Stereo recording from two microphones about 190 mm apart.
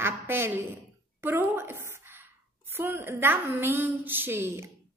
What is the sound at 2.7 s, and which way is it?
A woman's voice, 10° right (ahead or behind).